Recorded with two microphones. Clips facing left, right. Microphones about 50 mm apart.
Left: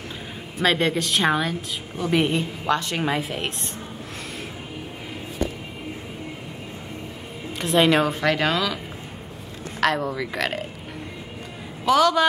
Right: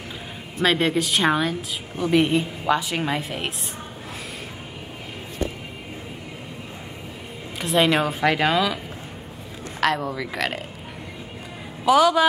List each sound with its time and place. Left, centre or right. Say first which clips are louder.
0.6 s a woman's voice: right 1 dB; centre
7.5 s a woman's voice: left 1 dB; centre
9.8 s a woman's voice: even; centre
11.8 s a man's voice: right 1 dB; centre